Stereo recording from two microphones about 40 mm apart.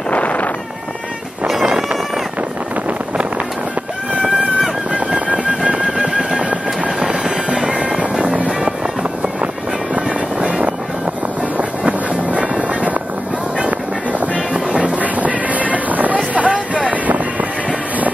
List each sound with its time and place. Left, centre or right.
0.1 s insect: left
4.1 s music: right
8.0 s music: right
9.9 s music: right
11.8 s music: right
14.5 s music: right
16.3 s vehicle: right
16.8 s wind noise: right